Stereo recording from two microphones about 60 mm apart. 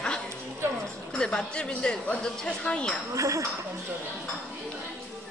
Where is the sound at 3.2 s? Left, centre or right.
Right.